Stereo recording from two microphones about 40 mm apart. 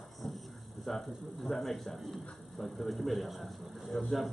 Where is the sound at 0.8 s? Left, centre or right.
Centre.